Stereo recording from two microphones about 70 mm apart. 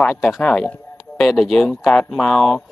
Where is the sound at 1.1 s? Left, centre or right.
Centre.